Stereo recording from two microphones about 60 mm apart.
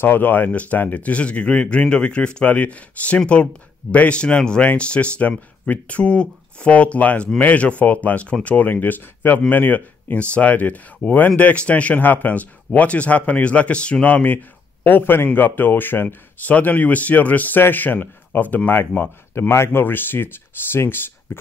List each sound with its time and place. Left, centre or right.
0.0 s speech: left
19.5 s speech: left